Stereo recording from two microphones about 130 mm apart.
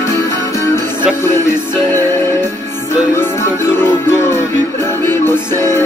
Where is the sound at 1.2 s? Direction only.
20° left (ahead or behind).